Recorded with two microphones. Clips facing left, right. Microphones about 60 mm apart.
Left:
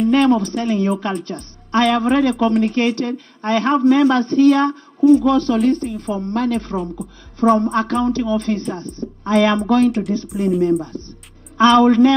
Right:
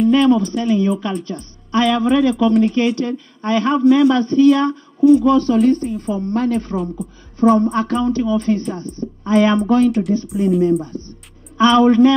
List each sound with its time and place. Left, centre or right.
0.1 s a woman's voice: left
5.2 s a woman's voice: left
11.5 s a woman's voice: left